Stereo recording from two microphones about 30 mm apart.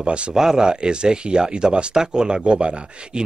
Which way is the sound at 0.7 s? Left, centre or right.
Right.